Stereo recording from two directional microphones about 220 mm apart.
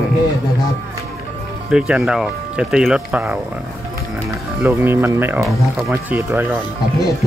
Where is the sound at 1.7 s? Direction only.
5° right (ahead or behind).